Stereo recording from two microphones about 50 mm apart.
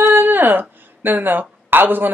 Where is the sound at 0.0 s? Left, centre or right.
Right.